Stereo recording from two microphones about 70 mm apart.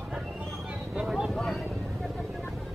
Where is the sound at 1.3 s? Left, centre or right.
Centre.